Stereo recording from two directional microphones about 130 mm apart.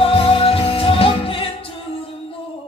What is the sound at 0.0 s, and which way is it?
Music, 45° left (ahead or behind).